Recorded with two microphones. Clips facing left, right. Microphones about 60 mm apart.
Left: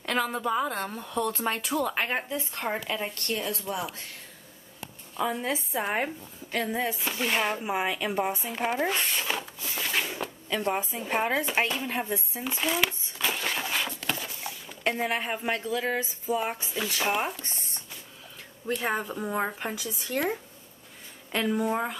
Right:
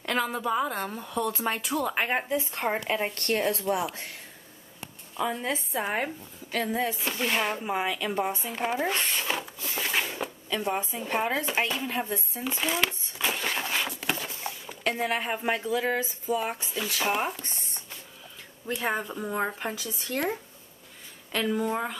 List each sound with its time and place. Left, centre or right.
0.0 s speech: centre
2.2 s speech: centre
3.2 s a woman's voice: right
5.1 s a woman's voice: centre
12.4 s a sound: centre
15.0 s a woman's voice: centre